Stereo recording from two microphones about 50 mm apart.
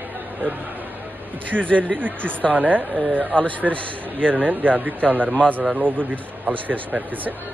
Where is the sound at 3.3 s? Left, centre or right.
Left.